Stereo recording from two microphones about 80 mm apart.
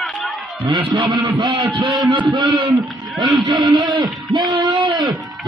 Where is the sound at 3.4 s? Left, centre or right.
Right.